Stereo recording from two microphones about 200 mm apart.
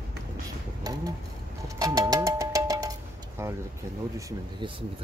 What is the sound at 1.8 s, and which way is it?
Music, 20° right (ahead or behind).